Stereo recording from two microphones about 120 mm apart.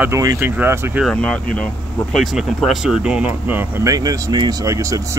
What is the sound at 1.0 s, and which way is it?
Speech, 10° left (ahead or behind).